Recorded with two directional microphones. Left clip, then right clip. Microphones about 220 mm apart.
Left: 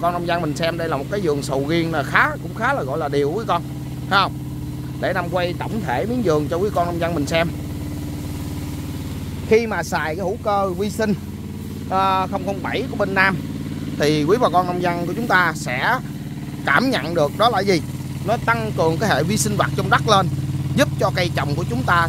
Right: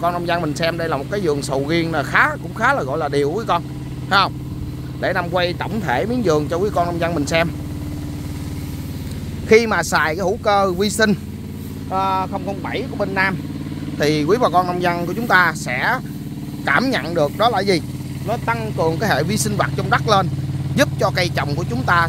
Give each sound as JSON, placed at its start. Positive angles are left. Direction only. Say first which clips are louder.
{"t": 0.0, "sound": "speech", "louder": "right 1 dB", "side_deg": 0}
{"t": 9.5, "sound": "speech", "louder": "right 4 dB", "side_deg": -15}
{"t": 11.9, "sound": "speech", "louder": "left 1 dB", "side_deg": 15}